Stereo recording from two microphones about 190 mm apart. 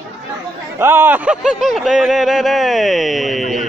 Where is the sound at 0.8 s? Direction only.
10° right (ahead or behind).